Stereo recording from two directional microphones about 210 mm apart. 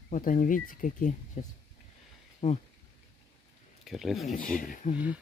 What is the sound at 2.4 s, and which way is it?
Speech, 25° left (ahead or behind).